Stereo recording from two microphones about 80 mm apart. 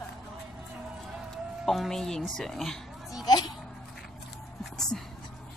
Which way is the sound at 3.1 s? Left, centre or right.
Left.